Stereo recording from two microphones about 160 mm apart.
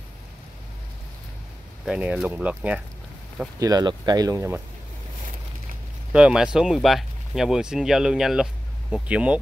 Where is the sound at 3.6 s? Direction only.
25° right (ahead or behind).